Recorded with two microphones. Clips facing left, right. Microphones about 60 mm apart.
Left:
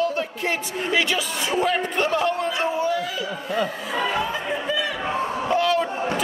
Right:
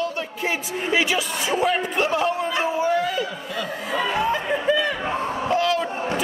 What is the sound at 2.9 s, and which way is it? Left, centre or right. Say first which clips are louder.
Speech: right 3 dB; right.